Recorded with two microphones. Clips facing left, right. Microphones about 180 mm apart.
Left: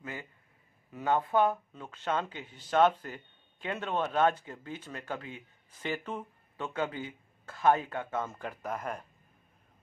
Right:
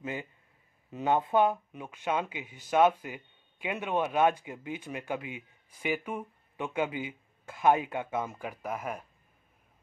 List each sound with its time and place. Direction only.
0.0 s a man's voice: 20° right (ahead or behind)